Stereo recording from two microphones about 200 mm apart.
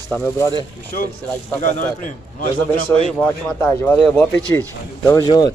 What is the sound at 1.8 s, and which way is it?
A man's voice, 40° left (ahead or behind).